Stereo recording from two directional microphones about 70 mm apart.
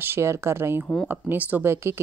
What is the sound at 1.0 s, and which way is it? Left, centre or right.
Speech, right.